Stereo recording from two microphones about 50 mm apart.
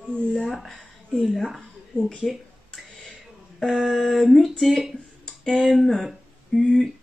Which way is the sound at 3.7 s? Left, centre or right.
Centre.